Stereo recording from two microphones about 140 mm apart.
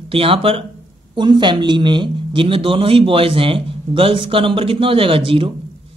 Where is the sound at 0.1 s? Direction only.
40° right (ahead or behind).